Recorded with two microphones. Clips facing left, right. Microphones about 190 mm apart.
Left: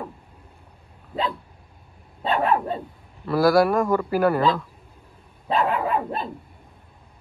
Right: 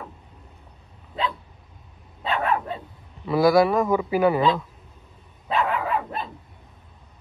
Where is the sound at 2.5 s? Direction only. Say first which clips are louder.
Left 3 dB; 35° left (ahead or behind).